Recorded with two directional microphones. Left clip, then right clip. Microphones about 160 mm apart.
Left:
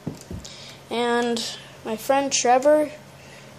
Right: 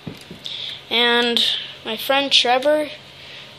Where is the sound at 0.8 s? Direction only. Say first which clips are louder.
Right 6 dB; 15° left (ahead or behind).